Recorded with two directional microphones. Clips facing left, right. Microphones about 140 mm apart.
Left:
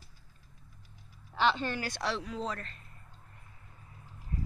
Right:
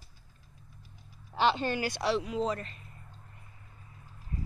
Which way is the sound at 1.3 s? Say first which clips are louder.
Right 2 dB; 15° right (ahead or behind).